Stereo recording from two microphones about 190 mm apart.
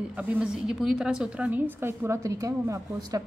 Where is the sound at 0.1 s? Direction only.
5° right (ahead or behind).